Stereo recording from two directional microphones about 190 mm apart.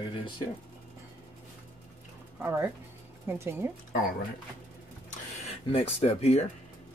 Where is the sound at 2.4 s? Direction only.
10° right (ahead or behind).